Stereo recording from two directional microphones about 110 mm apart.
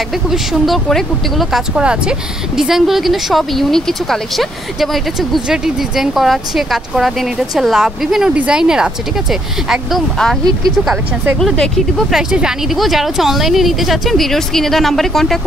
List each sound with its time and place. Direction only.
0.3 s speech: centre (ahead or behind)
11.3 s speech: 5° left (ahead or behind)